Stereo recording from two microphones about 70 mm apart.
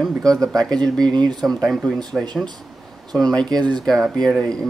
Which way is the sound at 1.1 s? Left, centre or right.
Right.